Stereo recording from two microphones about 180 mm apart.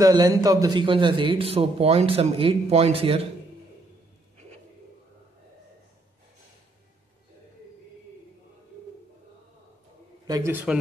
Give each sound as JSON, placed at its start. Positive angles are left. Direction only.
{"t": 0.0, "sound": "a man's voice", "side_deg": -20}
{"t": 10.2, "sound": "a man's voice", "side_deg": -20}